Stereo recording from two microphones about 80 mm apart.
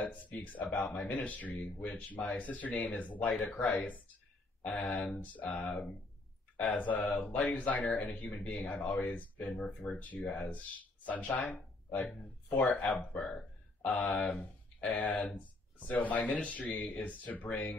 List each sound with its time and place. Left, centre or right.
0.0 s speech: centre